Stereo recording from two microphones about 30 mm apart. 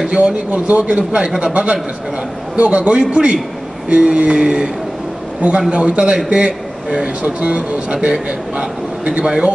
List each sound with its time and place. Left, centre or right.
0.1 s speech: right
0.5 s a man's voice: right
3.9 s speech: right
5.7 s speech: right